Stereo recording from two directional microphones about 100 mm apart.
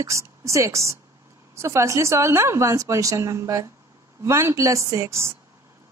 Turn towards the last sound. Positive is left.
turn(degrees=-30)  # may be behind; listen again after turning